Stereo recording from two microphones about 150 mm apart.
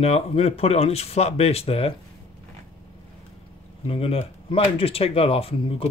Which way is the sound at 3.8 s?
40° left (ahead or behind).